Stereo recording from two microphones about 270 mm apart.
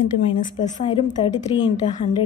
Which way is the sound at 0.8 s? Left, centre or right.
Centre.